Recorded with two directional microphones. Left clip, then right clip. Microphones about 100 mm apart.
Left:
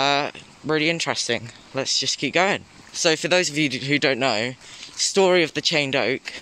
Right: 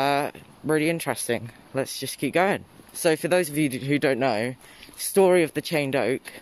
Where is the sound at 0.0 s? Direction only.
35° right (ahead or behind).